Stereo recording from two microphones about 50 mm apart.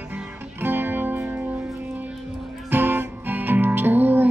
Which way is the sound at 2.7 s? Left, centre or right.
Right.